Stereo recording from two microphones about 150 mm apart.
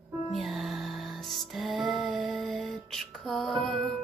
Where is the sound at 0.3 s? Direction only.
Centre (ahead or behind).